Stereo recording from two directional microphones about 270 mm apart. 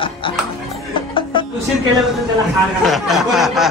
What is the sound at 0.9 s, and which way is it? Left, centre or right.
Music, centre.